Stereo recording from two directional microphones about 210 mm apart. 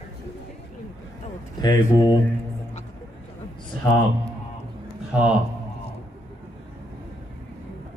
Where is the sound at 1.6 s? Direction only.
20° left (ahead or behind).